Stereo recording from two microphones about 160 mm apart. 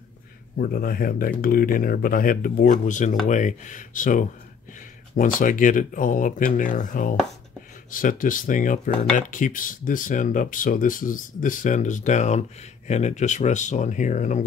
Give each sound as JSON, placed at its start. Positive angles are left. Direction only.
{"t": 0.6, "sound": "speech", "side_deg": 65}